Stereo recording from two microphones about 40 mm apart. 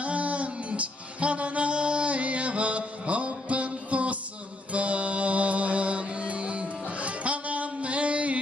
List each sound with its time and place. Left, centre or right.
0.0 s music: right